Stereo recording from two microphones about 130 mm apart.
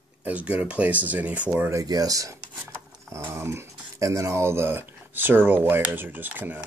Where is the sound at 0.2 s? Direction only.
10° right (ahead or behind).